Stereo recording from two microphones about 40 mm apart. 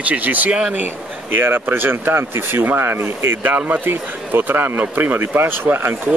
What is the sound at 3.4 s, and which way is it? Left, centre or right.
Speech, right.